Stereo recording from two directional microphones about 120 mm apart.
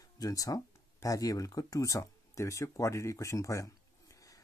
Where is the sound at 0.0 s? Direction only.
30° left (ahead or behind).